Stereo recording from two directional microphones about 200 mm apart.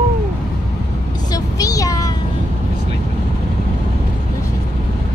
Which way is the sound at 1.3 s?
15° left (ahead or behind).